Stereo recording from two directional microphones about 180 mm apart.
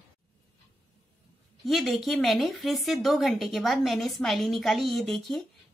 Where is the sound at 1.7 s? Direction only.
Centre (ahead or behind).